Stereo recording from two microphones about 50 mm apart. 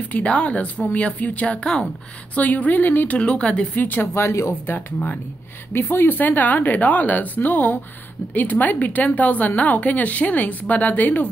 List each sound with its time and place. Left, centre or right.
0.1 s a woman's voice: left
3.2 s speech: left
3.7 s a woman's voice: left
4.1 s speech: left
5.7 s a woman's voice: left